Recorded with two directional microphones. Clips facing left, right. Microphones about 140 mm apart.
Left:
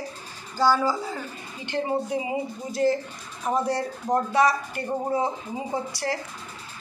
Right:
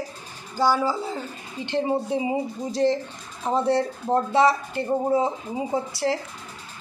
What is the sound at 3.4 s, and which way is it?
A woman's voice, 25° right (ahead or behind).